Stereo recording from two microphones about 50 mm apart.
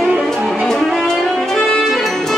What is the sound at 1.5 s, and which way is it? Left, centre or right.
Saxophone, centre.